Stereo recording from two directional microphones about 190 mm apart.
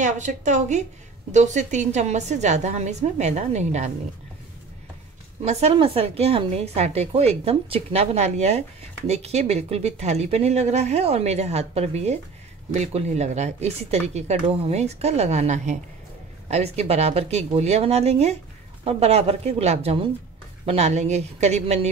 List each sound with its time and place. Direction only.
0.0 s a woman's voice: 40° right (ahead or behind)
5.4 s a woman's voice: 35° right (ahead or behind)